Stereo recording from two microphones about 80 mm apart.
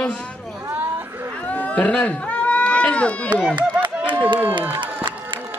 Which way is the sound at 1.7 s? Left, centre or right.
Centre.